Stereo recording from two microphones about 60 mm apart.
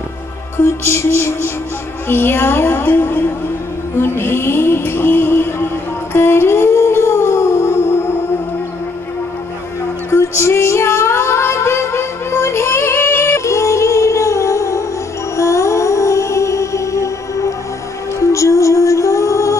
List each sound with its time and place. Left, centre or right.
0.6 s a sound: left
2.0 s a woman's voice: left
4.0 s a sound: left
6.1 s music: left
10.1 s female singing: left
15.3 s music: left